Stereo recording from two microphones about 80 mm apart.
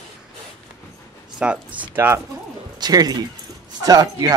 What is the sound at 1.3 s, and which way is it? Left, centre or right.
Speech, centre.